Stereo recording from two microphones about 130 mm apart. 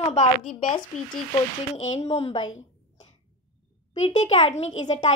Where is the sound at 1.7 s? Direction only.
55° left (ahead or behind).